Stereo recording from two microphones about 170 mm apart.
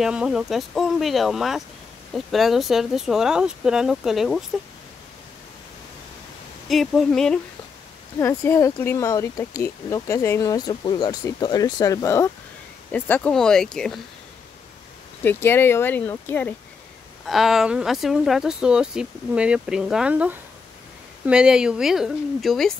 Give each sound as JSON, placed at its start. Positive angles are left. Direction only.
{"t": 0.0, "sound": "speech", "side_deg": -5}
{"t": 6.7, "sound": "speech", "side_deg": 0}
{"t": 8.2, "sound": "speech", "side_deg": 15}
{"t": 15.2, "sound": "speech", "side_deg": 15}
{"t": 17.3, "sound": "speech", "side_deg": 0}